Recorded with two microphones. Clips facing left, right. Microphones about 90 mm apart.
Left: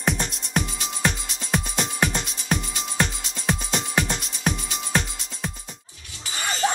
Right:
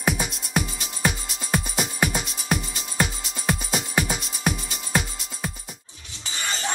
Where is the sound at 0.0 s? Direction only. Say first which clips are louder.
Even; 5° right (ahead or behind).